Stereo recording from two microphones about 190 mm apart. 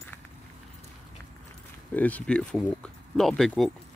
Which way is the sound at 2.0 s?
10° left (ahead or behind).